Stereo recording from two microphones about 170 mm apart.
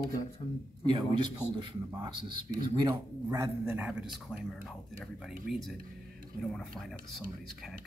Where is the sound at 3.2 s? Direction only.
15° right (ahead or behind).